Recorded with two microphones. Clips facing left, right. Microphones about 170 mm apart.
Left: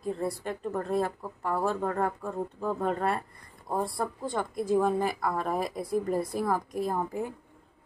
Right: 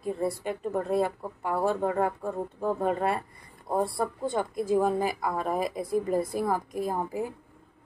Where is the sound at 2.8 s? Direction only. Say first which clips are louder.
Right 1 dB; 5° right (ahead or behind).